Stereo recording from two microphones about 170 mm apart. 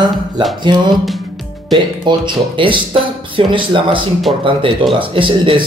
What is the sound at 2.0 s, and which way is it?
Speech, 30° right (ahead or behind).